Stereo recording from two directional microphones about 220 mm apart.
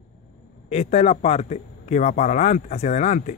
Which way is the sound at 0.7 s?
30° left (ahead or behind).